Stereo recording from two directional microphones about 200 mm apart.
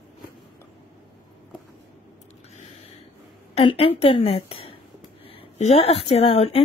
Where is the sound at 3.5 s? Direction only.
30° left (ahead or behind).